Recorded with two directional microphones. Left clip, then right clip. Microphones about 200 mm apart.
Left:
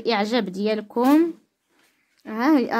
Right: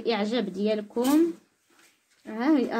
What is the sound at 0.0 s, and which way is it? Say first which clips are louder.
A woman's voice: left 5 dB; 30° left (ahead or behind).